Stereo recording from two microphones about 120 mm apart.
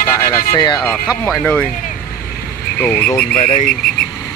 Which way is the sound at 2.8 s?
15° left (ahead or behind).